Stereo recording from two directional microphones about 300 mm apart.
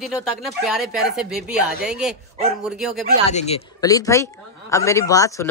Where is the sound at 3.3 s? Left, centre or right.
Left.